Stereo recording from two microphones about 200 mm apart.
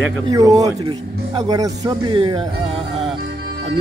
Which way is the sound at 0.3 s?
15° right (ahead or behind).